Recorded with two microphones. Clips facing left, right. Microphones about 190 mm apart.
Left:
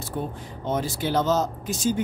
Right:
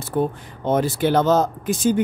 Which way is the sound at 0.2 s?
65° right (ahead or behind).